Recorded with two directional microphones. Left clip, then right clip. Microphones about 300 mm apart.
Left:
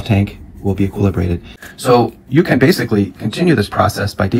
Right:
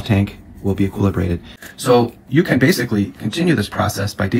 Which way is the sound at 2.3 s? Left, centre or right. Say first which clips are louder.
Left 3 dB; centre.